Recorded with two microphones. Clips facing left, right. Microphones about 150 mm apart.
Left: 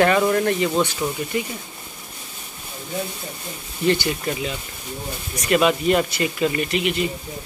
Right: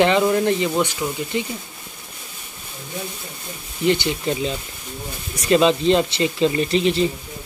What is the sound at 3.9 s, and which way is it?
Speech, 20° right (ahead or behind).